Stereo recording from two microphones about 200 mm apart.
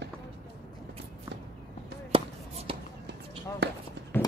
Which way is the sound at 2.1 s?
25° right (ahead or behind).